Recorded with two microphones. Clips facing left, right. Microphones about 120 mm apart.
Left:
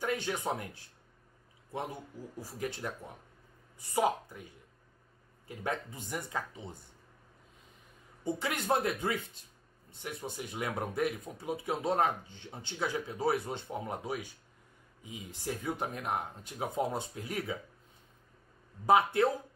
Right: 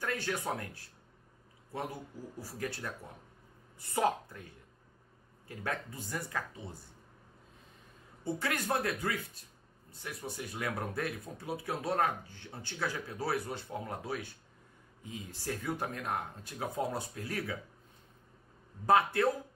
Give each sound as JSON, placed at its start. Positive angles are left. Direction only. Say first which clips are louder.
{"t": 0.0, "sound": "speech", "louder": "left 2 dB", "side_deg": 15}
{"t": 2.3, "sound": "speech", "louder": "left 1 dB", "side_deg": 20}
{"t": 3.9, "sound": "speech", "louder": "left 1 dB", "side_deg": 10}
{"t": 8.2, "sound": "speech", "louder": "even", "side_deg": 15}
{"t": 18.9, "sound": "speech", "louder": "left 1 dB", "side_deg": 15}